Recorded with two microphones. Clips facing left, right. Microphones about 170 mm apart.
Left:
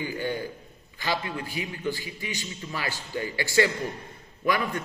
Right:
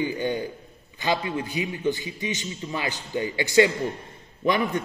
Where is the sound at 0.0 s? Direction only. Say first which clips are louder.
Right 4 dB; 20° right (ahead or behind).